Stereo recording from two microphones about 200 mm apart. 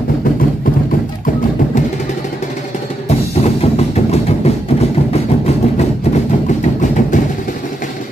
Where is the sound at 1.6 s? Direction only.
40° left (ahead or behind).